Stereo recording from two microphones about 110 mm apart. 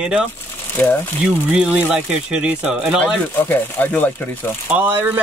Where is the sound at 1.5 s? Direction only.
10° right (ahead or behind).